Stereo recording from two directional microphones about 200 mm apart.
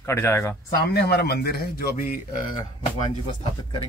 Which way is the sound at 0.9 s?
55° left (ahead or behind).